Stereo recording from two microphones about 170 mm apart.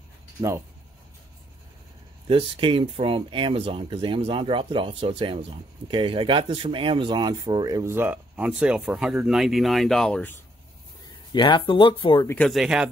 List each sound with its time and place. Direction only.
2.2 s speech: 30° right (ahead or behind); by 10.3 s 5° left (ahead or behind)
11.3 s speech: 30° left (ahead or behind)
12.3 s speech: 5° left (ahead or behind)